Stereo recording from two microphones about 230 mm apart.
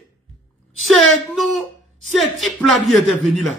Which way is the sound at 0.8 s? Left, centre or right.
Centre.